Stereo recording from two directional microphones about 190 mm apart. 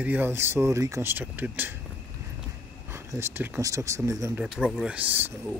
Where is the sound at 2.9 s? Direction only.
15° right (ahead or behind).